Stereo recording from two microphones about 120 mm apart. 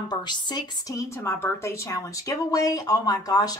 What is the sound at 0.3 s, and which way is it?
A woman's voice, 35° left (ahead or behind).